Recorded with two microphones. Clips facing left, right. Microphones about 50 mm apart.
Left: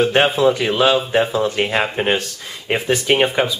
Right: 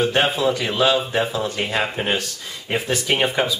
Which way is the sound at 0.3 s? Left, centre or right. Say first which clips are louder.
Left 5 dB; centre.